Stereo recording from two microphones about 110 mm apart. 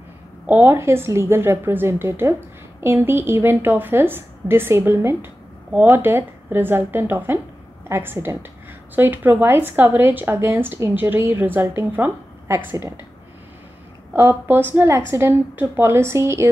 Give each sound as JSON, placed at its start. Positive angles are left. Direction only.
{"t": 0.5, "sound": "a woman's voice", "side_deg": -20}
{"t": 14.7, "sound": "a woman's voice", "side_deg": -20}